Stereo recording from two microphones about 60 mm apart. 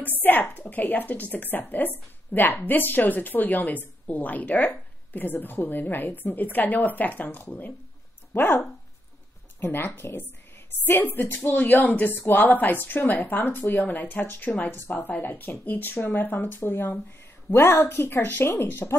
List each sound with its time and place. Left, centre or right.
0.2 s a woman's voice: left
9.6 s speech: left
10.9 s a woman's voice: left